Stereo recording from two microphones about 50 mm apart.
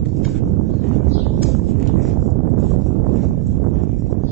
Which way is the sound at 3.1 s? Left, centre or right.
Centre.